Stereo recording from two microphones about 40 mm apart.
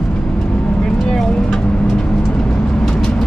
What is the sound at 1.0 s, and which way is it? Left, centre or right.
Vehicle, centre.